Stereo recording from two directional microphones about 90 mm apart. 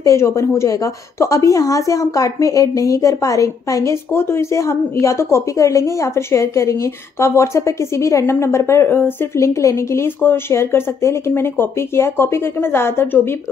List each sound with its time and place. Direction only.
0.0 s a woman's voice: 35° left (ahead or behind)